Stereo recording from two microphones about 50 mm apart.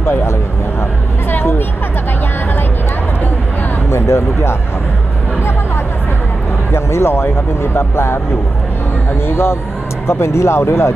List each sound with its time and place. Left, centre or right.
0.0 s speech: left
3.9 s speech: left
6.7 s speech: left
9.3 s speech: left